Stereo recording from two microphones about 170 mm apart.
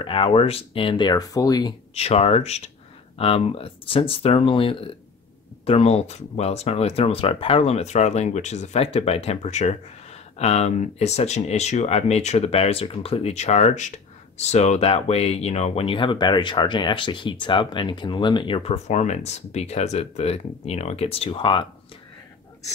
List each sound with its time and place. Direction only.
0.0 s speech: 30° left (ahead or behind)
2.0 s speech: 35° left (ahead or behind)